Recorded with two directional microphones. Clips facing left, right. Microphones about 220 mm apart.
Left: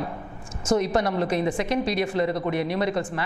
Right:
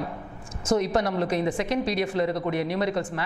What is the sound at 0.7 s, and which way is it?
A woman's voice, 15° left (ahead or behind).